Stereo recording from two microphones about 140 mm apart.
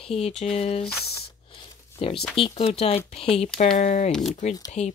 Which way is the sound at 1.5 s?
40° left (ahead or behind).